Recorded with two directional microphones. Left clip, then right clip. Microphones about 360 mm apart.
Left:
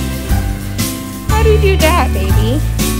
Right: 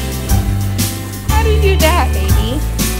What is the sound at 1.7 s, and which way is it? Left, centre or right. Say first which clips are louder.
Music: left 1 dB; centre.